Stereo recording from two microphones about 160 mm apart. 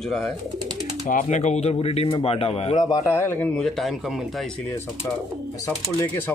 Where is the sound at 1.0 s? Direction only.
55° left (ahead or behind).